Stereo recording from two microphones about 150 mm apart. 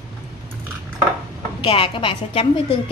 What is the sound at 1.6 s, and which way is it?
A woman's voice, 35° left (ahead or behind).